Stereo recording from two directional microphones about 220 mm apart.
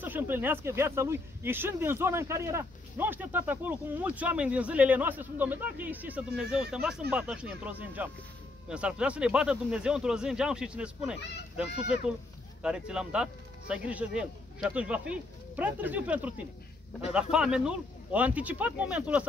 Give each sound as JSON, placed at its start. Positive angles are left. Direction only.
{"t": 0.0, "sound": "speech", "side_deg": -10}
{"t": 12.6, "sound": "speech", "side_deg": -5}